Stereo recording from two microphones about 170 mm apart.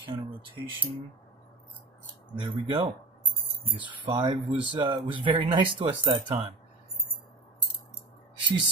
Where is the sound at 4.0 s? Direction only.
30° right (ahead or behind).